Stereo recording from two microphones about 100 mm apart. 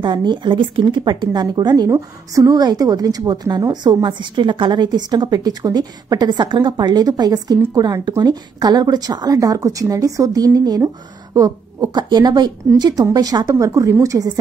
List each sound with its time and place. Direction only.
0.0 s speech: 50° right (ahead or behind)